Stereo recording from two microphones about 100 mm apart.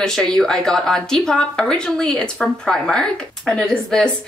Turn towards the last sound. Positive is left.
turn(degrees=5)  # may be behind; listen again after turning